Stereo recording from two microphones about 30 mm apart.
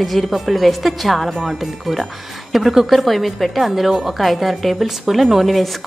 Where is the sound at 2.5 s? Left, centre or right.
Centre.